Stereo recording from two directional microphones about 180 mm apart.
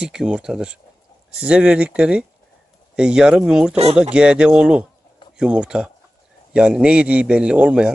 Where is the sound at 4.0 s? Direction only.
5° right (ahead or behind).